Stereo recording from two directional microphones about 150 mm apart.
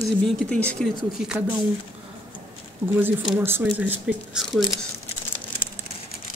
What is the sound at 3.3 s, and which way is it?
Speech, 15° right (ahead or behind).